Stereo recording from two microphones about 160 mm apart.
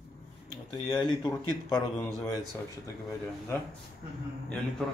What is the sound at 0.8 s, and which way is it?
Speech, 25° left (ahead or behind).